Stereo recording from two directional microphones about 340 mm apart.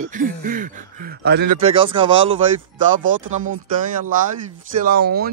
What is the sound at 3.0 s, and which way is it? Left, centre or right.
Speech, right.